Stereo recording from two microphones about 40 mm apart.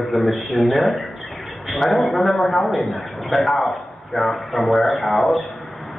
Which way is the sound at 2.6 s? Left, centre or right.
Left.